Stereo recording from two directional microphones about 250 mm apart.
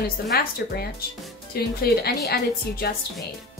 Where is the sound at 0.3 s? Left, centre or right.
Left.